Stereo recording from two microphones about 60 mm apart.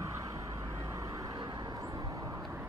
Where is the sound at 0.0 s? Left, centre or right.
Right.